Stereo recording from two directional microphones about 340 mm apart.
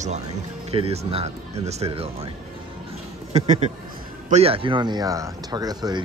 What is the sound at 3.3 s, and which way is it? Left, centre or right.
Speech, centre.